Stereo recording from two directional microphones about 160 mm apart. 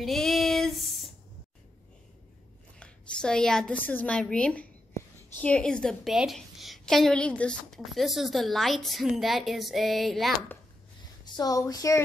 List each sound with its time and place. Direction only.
0.0 s female singing: centre (ahead or behind)
2.8 s a woman's voice: 5° left (ahead or behind)
11.3 s speech: 20° left (ahead or behind)